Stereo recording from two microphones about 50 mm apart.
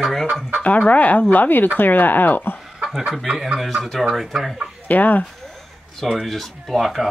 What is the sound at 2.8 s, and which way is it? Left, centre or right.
Chicken, centre.